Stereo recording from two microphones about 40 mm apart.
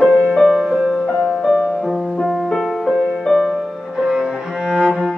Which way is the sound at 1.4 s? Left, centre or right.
Centre.